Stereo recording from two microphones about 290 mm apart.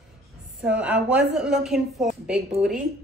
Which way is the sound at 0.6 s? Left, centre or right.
Centre.